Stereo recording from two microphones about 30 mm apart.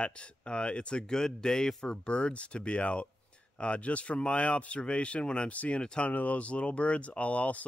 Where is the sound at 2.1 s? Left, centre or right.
Left.